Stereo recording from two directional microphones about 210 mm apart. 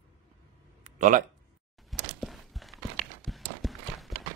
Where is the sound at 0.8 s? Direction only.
35° right (ahead or behind).